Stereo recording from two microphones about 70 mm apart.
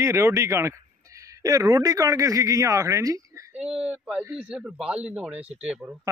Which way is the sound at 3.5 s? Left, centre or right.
Centre.